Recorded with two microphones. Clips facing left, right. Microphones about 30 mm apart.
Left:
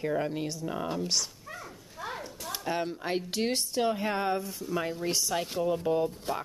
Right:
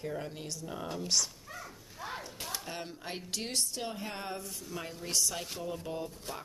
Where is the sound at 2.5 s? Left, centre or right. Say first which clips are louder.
Left 11 dB; centre.